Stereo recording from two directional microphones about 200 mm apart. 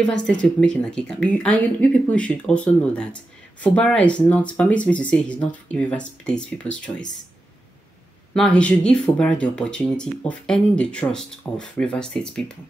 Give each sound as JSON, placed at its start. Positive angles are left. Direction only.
{"t": 0.0, "sound": "speech", "side_deg": 5}
{"t": 8.4, "sound": "speech", "side_deg": 5}